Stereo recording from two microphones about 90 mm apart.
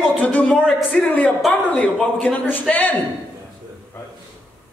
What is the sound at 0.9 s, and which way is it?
Speech, 5° left (ahead or behind).